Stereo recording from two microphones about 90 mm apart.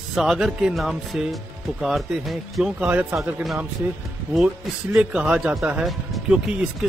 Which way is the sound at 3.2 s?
5° right (ahead or behind).